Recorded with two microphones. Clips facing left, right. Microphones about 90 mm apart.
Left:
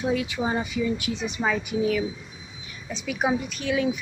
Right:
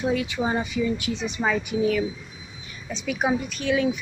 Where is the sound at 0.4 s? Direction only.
Centre (ahead or behind).